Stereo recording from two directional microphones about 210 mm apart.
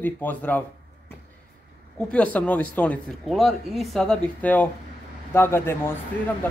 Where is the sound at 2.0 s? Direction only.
5° left (ahead or behind).